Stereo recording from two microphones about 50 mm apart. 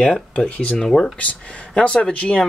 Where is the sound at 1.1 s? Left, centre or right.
Left.